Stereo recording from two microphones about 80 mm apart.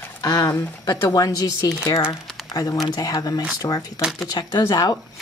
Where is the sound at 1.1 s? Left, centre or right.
Left.